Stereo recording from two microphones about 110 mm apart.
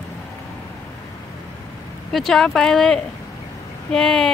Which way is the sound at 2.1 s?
5° left (ahead or behind).